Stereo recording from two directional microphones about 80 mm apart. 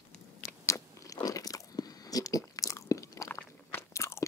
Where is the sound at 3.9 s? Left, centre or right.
Left.